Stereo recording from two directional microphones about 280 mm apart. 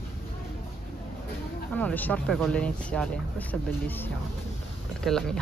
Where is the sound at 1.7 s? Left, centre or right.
Centre.